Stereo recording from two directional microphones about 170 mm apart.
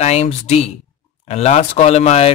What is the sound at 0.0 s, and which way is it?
Speech, 40° left (ahead or behind).